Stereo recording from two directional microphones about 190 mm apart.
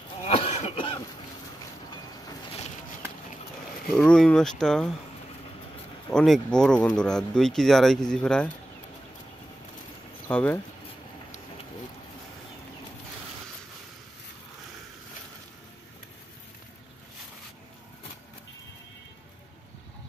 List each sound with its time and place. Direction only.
0.2 s cough: 35° left (ahead or behind)
3.9 s speech: 5° left (ahead or behind)
6.1 s speech: centre (ahead or behind)
10.3 s speech: 5° left (ahead or behind)